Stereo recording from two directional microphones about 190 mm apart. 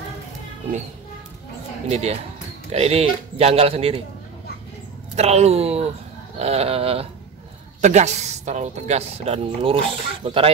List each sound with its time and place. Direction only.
1.9 s speech: 35° right (ahead or behind)
5.1 s speech: 35° right (ahead or behind)